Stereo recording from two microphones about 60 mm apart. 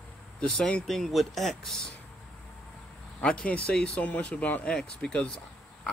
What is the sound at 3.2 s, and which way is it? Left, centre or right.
Speech, left.